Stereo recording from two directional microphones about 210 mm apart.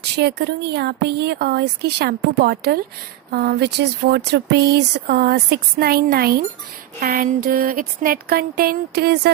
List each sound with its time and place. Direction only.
0.2 s speech: 50° right (ahead or behind)